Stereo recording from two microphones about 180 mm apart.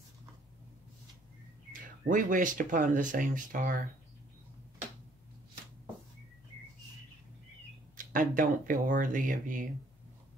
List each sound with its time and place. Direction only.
1.7 s speech: 45° right (ahead or behind)
7.9 s speech: 50° right (ahead or behind)